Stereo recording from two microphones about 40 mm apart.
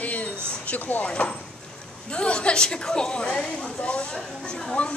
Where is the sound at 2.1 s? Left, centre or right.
Left.